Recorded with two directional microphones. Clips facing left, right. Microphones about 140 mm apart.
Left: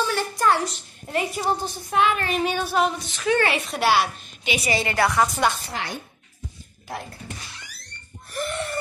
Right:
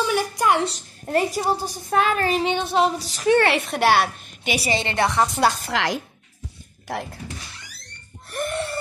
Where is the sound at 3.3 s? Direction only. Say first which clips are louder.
Right 3 dB; 65° right (ahead or behind).